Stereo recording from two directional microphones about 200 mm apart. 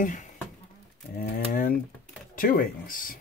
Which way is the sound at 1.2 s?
45° left (ahead or behind).